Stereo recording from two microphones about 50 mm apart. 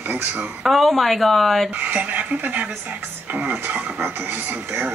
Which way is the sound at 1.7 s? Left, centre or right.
Right.